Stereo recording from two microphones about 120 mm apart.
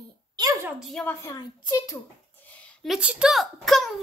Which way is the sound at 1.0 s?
20° left (ahead or behind).